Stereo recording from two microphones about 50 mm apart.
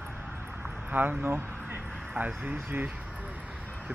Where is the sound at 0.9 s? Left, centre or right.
Right.